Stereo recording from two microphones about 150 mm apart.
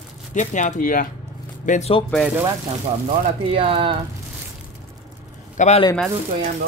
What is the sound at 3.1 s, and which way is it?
Speech, 40° right (ahead or behind).